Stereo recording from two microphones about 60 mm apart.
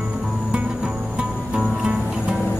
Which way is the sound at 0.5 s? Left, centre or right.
Right.